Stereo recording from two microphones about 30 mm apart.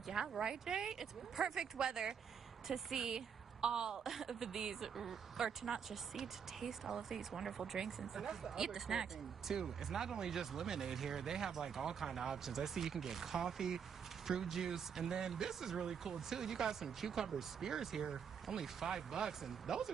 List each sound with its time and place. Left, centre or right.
0.4 s speech: right